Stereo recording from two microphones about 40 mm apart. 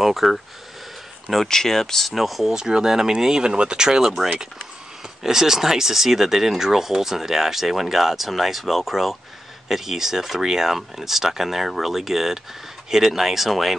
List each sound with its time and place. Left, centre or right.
0.0 s speech: centre
1.5 s speech: centre
2.1 s speech: centre
2.5 s speech: centre
5.2 s speech: centre